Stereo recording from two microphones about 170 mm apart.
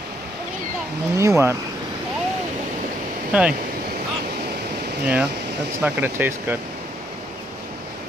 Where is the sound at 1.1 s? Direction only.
15° right (ahead or behind).